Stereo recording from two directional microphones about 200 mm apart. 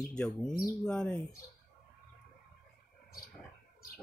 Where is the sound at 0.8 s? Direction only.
5° left (ahead or behind).